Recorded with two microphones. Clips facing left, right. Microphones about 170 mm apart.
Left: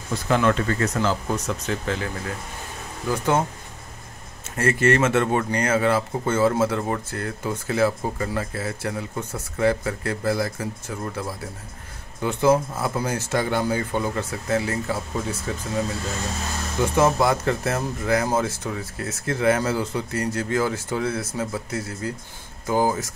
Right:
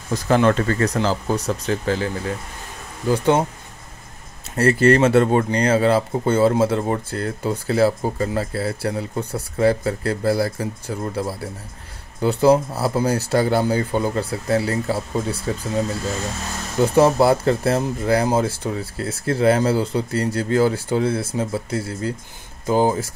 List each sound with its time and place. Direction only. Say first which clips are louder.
0.1 s speech: right 4 dB; 35° right (ahead or behind)
4.6 s speech: right 5 dB; 35° right (ahead or behind)
16.9 s speech: right 5 dB; 30° right (ahead or behind)